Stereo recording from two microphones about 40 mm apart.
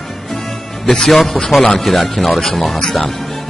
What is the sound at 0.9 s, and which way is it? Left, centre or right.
A man's voice, centre.